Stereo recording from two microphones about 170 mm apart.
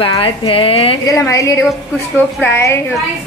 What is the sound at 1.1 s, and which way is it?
A woman's voice, 20° left (ahead or behind).